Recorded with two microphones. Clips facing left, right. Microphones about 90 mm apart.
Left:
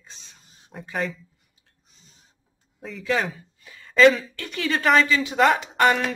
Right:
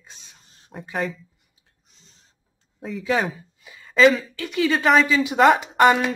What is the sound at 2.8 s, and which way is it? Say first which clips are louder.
A woman's voice: right 2 dB; centre (ahead or behind).